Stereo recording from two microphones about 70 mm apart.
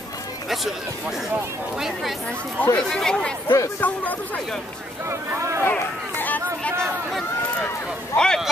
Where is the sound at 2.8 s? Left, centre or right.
Centre.